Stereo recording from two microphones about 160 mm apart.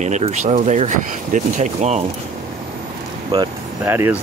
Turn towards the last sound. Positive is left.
turn(degrees=-10)  # may be behind; listen again after turning